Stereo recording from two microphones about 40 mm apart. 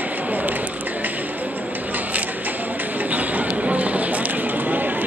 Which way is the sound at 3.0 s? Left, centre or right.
Right.